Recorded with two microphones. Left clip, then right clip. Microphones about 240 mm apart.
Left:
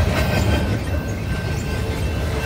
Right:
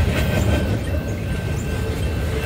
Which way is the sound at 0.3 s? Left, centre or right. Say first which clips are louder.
Left 1 dB; left.